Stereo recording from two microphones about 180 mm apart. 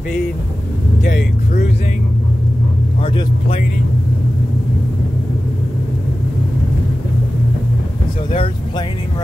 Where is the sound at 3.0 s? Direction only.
30° left (ahead or behind).